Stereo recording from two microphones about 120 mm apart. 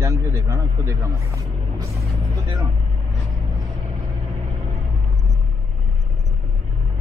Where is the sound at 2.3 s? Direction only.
25° right (ahead or behind).